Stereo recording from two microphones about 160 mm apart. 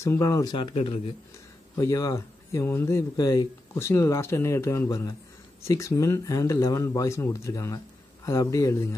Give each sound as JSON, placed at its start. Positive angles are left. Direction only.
{"t": 0.0, "sound": "speech", "side_deg": 20}
{"t": 1.8, "sound": "speech", "side_deg": 20}